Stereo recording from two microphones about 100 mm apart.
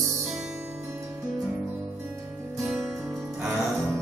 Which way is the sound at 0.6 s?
25° right (ahead or behind).